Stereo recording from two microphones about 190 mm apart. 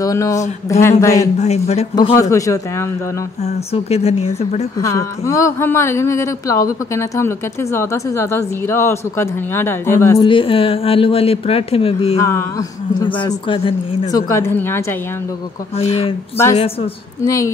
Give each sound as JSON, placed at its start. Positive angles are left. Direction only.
{"t": 0.0, "sound": "speech", "side_deg": 15}
{"t": 1.4, "sound": "speech", "side_deg": 35}
{"t": 2.0, "sound": "speech", "side_deg": 20}
{"t": 3.4, "sound": "speech", "side_deg": 35}
{"t": 4.7, "sound": "speech", "side_deg": 15}
{"t": 10.2, "sound": "a woman's voice", "side_deg": 25}
{"t": 12.2, "sound": "speech", "side_deg": 15}
{"t": 13.0, "sound": "a woman's voice", "side_deg": 25}
{"t": 14.1, "sound": "speech", "side_deg": 15}
{"t": 15.7, "sound": "speech", "side_deg": 35}
{"t": 17.2, "sound": "speech", "side_deg": 15}